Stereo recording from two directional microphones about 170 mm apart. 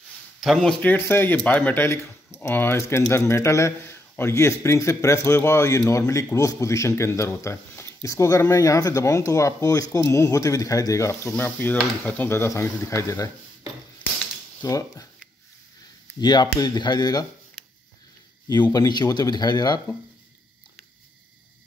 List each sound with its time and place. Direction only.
0.4 s speech: centre (ahead or behind); by 13.3 s 20° left (ahead or behind)
14.6 s speech: 20° left (ahead or behind)
16.2 s speech: 25° left (ahead or behind)
18.5 s speech: 25° left (ahead or behind)